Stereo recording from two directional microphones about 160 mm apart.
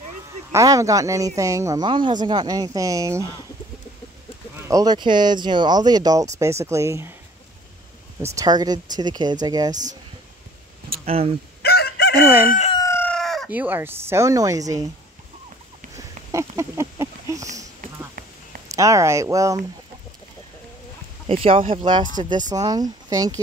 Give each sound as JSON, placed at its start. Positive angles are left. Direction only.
{"t": 0.5, "sound": "speech", "side_deg": -20}
{"t": 4.6, "sound": "speech", "side_deg": -25}
{"t": 8.2, "sound": "speech", "side_deg": -20}
{"t": 11.1, "sound": "speech", "side_deg": -40}
{"t": 11.6, "sound": "chicken", "side_deg": 80}
{"t": 12.4, "sound": "fowl", "side_deg": 50}
{"t": 12.7, "sound": "chicken", "side_deg": 20}
{"t": 13.5, "sound": "speech", "side_deg": -10}
{"t": 16.0, "sound": "a sound", "side_deg": -20}
{"t": 18.7, "sound": "speech", "side_deg": -20}
{"t": 21.3, "sound": "speech", "side_deg": -35}